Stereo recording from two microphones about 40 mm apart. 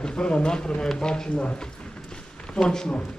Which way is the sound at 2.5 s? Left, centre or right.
Centre.